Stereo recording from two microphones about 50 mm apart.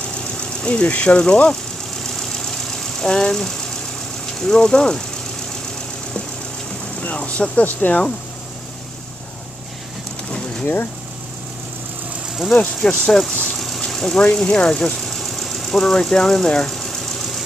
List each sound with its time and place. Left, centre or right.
0.4 s speech: left
2.1 s engine: centre
4.4 s speech: centre
7.0 s speech: left
12.7 s speech: centre
13.7 s a sound: centre
14.2 s speech: centre
15.0 s engine: centre